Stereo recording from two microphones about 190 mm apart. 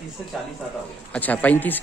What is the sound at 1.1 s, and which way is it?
Speech, 10° left (ahead or behind).